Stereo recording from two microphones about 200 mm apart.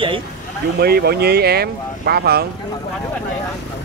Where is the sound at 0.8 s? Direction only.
50° right (ahead or behind).